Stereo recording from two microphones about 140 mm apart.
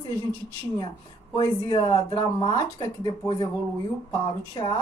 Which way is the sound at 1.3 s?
30° left (ahead or behind).